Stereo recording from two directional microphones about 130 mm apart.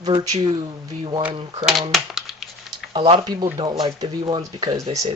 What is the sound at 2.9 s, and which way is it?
Speech, 40° right (ahead or behind).